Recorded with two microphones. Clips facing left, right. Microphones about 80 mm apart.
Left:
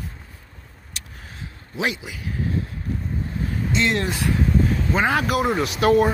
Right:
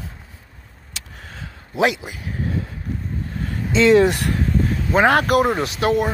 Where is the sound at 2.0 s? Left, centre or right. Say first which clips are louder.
Right 2 dB; right.